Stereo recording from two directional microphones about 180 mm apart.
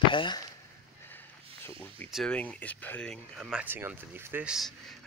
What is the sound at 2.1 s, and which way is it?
Speech, 5° left (ahead or behind).